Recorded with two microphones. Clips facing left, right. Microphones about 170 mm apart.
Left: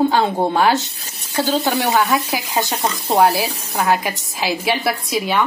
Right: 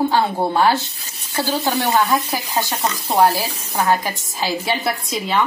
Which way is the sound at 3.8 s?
5° left (ahead or behind).